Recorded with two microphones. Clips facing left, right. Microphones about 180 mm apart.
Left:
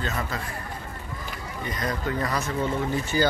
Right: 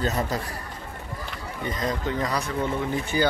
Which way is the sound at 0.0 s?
40° right (ahead or behind).